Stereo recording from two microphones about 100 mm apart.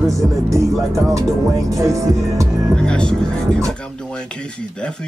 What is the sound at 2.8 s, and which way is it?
Speech, 10° left (ahead or behind).